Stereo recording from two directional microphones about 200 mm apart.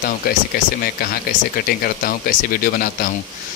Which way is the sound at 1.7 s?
45° left (ahead or behind).